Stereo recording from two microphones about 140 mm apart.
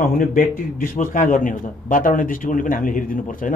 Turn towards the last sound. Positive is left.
turn(degrees=75)  # may be behind; listen again after turning